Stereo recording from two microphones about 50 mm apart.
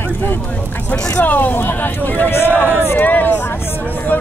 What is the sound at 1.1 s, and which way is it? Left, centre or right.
Speech, left.